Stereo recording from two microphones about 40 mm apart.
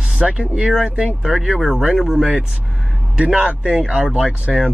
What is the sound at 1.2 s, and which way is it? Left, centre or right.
A man's voice, centre.